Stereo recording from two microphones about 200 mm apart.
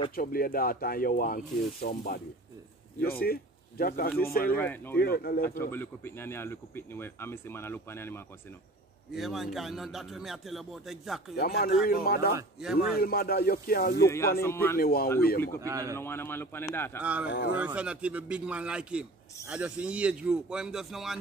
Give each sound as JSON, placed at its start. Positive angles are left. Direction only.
{"t": 0.1, "sound": "speech", "side_deg": 45}
{"t": 4.6, "sound": "speech", "side_deg": 10}
{"t": 4.9, "sound": "speech", "side_deg": 50}
{"t": 5.5, "sound": "speech", "side_deg": 10}
{"t": 9.1, "sound": "a man's voice", "side_deg": 0}
{"t": 11.3, "sound": "speech", "side_deg": 50}
{"t": 12.5, "sound": "a man's voice", "side_deg": -5}
{"t": 12.9, "sound": "speech", "side_deg": 50}
{"t": 14.0, "sound": "speech", "side_deg": 15}
{"t": 14.8, "sound": "speech", "side_deg": 50}
{"t": 15.6, "sound": "a man's voice", "side_deg": -15}
{"t": 16.0, "sound": "speech", "side_deg": 10}
{"t": 17.0, "sound": "a man's voice", "side_deg": -5}